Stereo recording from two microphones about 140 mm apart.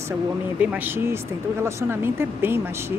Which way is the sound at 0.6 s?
15° right (ahead or behind).